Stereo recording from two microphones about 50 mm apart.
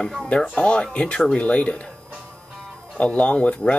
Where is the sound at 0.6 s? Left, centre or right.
Left.